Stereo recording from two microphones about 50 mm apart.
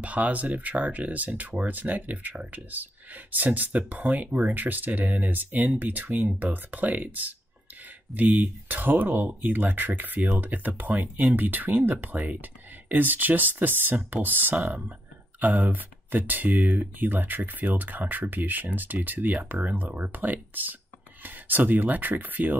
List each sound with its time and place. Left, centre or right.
0.0 s speech: right